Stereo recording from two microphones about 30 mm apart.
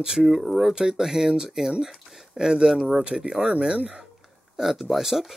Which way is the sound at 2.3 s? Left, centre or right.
Centre.